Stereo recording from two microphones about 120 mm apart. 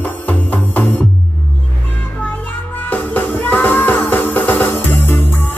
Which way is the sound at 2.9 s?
15° left (ahead or behind).